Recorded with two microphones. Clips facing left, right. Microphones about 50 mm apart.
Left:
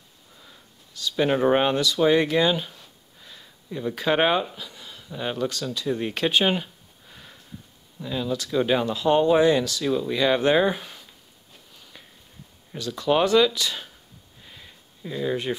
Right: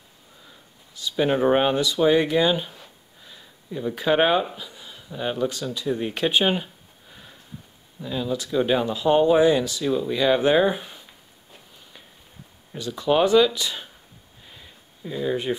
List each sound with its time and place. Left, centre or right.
1.1 s speech: centre
2.0 s a sound: centre
4.1 s speech: centre
4.5 s speech: centre
5.9 s speech: centre
6.1 s a sound: centre
8.0 s speech: centre
12.7 s speech: centre
14.5 s a sound: centre